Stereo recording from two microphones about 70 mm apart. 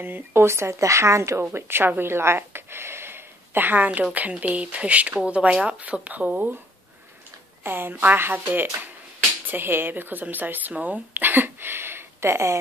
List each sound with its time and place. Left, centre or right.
0.0 s speech: right
7.6 s speech: right